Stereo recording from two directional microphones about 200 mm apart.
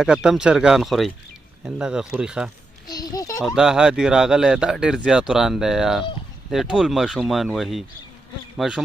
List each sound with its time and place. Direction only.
0.0 s speech: 5° right (ahead or behind)
2.9 s a sound: 20° left (ahead or behind)
3.4 s speech: 5° right (ahead or behind)